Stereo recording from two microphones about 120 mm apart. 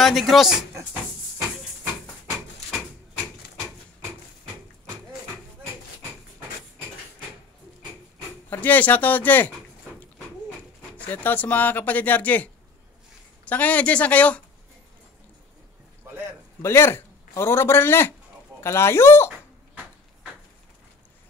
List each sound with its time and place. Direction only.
0.0 s speech: centre (ahead or behind)
8.5 s speech: 15° left (ahead or behind)
11.0 s speech: 15° left (ahead or behind)
13.5 s speech: 15° left (ahead or behind)
16.6 s a man's voice: 20° left (ahead or behind)